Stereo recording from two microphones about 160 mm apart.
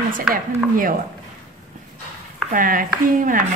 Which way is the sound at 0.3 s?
60° right (ahead or behind).